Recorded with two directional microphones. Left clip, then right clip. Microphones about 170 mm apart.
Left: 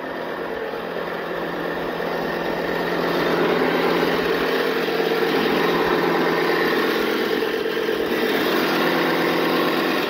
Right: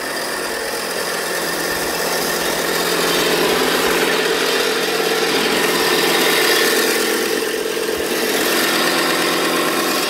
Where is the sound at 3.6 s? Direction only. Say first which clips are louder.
Right 3 dB; 10° left (ahead or behind).